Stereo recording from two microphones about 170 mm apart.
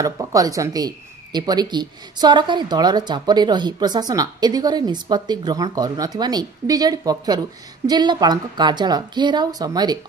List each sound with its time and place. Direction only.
0.0 s speech: 20° right (ahead or behind)